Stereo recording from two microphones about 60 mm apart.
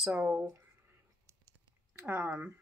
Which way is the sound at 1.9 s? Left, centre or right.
Right.